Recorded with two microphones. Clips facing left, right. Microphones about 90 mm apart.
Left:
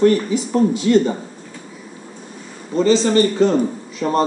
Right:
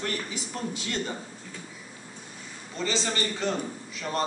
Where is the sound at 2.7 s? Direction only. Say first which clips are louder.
Left 15 dB; 40° left (ahead or behind).